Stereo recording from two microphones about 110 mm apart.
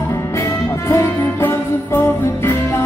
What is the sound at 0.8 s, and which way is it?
Music, 25° left (ahead or behind).